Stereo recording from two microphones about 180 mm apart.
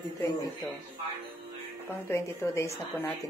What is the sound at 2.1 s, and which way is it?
Speech, 15° left (ahead or behind).